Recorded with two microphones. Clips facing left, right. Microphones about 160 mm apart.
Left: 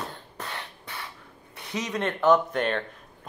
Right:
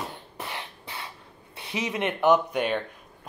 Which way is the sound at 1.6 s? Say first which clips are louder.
Right 1 dB; 15° right (ahead or behind).